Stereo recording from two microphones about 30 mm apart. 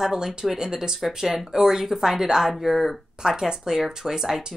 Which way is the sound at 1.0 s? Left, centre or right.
Centre.